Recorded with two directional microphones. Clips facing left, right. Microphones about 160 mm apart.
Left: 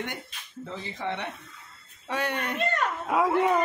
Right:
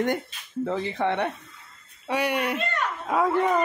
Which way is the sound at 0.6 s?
60° right (ahead or behind).